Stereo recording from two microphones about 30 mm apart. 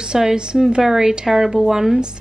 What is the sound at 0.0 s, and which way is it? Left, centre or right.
A woman's voice, right.